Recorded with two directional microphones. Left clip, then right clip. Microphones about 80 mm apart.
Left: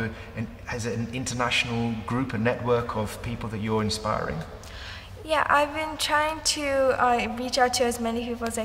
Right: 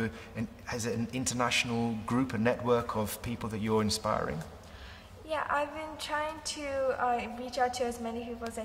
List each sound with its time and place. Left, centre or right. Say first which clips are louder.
0.0 s a man's voice: left 4 dB; left